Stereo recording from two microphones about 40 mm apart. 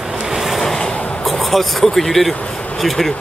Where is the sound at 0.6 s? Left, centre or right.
Centre.